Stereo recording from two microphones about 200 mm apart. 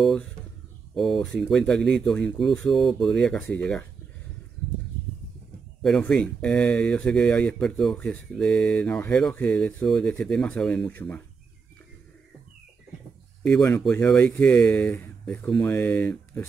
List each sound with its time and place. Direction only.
0.0 s speech: 5° left (ahead or behind)
5.8 s speech: 5° left (ahead or behind)
13.4 s speech: 5° left (ahead or behind)